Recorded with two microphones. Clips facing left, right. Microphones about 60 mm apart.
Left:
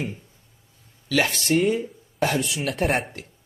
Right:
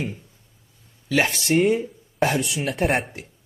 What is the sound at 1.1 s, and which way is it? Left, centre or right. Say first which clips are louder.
Speech: right 1 dB; right.